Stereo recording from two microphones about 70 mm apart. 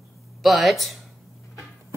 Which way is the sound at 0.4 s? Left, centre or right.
Centre.